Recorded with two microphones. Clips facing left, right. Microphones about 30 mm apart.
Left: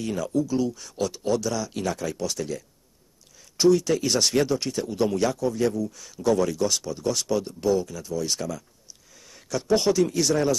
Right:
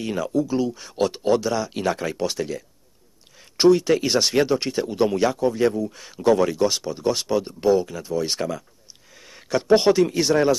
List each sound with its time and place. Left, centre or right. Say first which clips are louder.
0.0 s speech: right 2 dB; right